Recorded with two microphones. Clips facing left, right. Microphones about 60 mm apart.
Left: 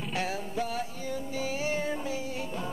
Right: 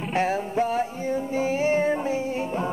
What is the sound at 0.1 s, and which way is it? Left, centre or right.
Music, right.